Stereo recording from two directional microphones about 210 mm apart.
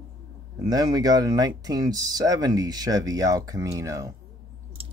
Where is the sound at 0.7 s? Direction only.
20° right (ahead or behind).